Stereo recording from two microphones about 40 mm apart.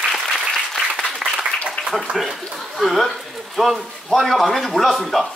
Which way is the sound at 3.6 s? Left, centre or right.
Centre.